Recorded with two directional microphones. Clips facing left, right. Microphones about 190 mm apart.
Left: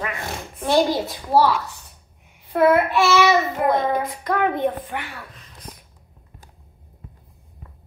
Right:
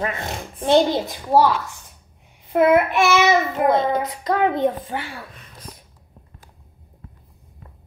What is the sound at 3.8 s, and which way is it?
A woman's voice, 20° right (ahead or behind).